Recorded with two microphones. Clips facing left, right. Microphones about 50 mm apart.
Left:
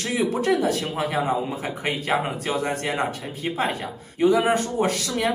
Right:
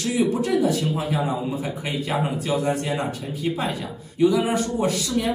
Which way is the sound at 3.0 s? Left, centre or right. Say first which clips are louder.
Even; left.